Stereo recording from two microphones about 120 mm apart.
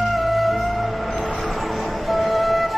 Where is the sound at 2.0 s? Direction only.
Centre (ahead or behind).